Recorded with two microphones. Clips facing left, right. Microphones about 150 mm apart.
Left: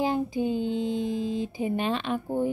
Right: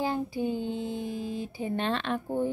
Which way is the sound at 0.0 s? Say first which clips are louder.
Left 3 dB; 20° left (ahead or behind).